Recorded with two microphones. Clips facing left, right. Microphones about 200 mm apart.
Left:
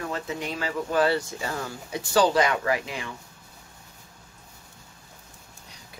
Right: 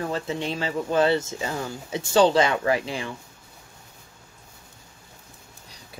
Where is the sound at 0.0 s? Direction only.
30° right (ahead or behind).